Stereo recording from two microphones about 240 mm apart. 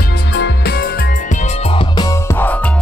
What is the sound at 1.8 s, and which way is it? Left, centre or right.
Music, centre.